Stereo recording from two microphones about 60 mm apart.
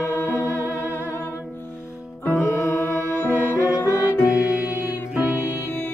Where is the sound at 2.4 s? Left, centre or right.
Left.